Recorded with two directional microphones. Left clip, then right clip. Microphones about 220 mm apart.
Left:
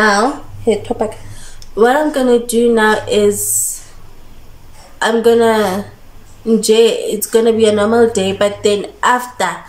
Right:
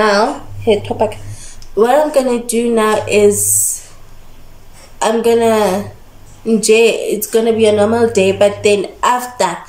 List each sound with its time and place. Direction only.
0.0 s speech: 5° right (ahead or behind)
4.9 s speech: 5° right (ahead or behind)